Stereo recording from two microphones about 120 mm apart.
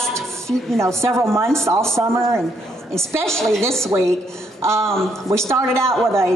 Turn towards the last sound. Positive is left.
turn(degrees=-20)  # may be behind; listen again after turning